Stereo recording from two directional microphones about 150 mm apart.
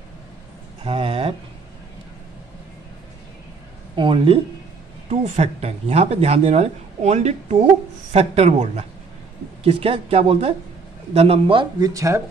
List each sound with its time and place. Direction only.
0.8 s a sound: 40° right (ahead or behind)
3.9 s a woman's voice: 35° right (ahead or behind)
5.2 s a woman's voice: 45° right (ahead or behind)
11.8 s speech: 20° right (ahead or behind)